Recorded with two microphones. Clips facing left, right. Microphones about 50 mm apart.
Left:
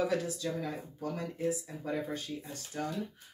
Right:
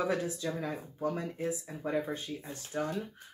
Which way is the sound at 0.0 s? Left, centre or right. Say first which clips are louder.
Even; right.